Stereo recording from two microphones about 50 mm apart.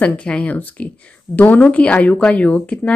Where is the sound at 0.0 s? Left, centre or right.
Left.